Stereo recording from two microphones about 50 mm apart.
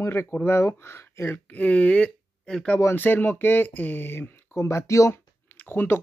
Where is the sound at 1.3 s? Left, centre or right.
Left; by 2.6 s centre.